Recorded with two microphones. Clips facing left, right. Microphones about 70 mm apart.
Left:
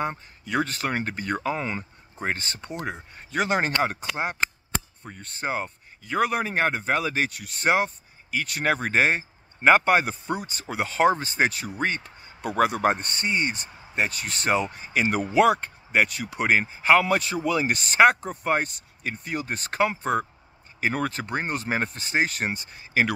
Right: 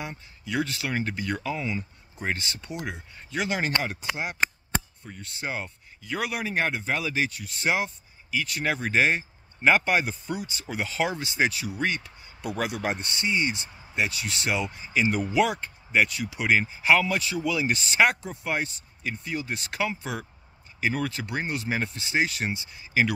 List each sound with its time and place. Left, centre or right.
0.0 s speech: left
5.0 s speech: left